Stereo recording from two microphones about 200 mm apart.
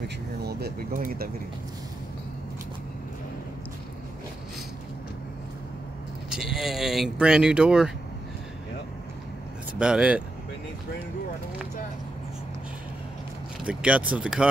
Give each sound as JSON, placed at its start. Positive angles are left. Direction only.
{"t": 0.4, "sound": "speech", "side_deg": -55}
{"t": 6.3, "sound": "speech", "side_deg": 0}
{"t": 9.8, "sound": "speech", "side_deg": -5}
{"t": 13.7, "sound": "speech", "side_deg": -5}